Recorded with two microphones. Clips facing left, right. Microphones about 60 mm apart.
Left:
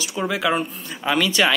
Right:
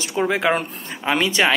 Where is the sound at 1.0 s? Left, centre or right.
Right.